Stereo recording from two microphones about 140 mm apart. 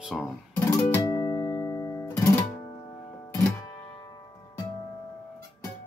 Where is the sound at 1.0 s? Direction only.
30° left (ahead or behind).